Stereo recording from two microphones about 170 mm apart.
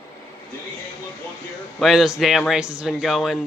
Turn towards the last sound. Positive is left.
turn(degrees=0)  # may be behind; listen again after turning